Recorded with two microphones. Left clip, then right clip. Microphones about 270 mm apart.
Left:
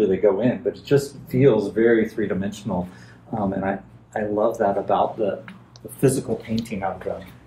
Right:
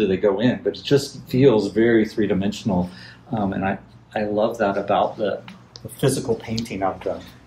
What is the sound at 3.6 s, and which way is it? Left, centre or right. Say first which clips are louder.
Speech: right 1 dB; right.